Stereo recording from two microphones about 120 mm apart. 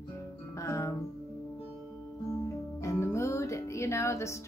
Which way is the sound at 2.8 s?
25° left (ahead or behind).